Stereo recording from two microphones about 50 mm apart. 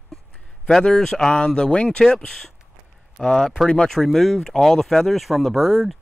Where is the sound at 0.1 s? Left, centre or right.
Centre.